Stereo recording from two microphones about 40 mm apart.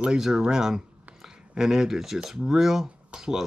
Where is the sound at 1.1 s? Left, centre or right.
Centre.